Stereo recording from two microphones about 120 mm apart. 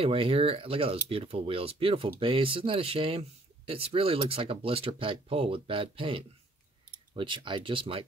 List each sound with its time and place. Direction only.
0.0 s speech: 50° right (ahead or behind)